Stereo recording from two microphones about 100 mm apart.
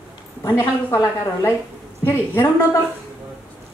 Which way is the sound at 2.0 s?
25° left (ahead or behind).